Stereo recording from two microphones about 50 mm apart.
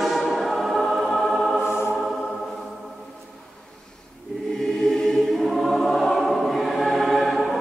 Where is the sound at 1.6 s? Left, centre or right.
Left.